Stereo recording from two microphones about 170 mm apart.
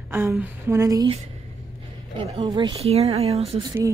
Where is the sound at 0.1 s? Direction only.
10° right (ahead or behind).